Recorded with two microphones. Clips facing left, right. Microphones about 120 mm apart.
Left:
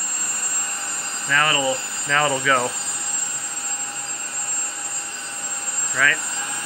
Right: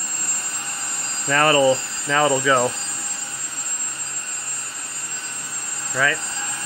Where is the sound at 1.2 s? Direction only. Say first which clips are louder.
Right 6 dB; 35° right (ahead or behind).